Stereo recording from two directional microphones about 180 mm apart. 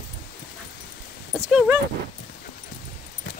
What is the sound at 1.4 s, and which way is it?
Speech, 5° right (ahead or behind).